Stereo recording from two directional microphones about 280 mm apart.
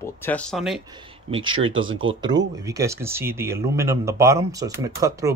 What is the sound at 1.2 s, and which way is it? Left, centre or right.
Speech, centre.